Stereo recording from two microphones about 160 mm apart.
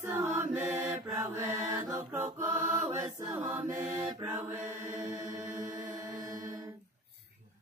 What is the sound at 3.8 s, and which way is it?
Mantra, 10° right (ahead or behind).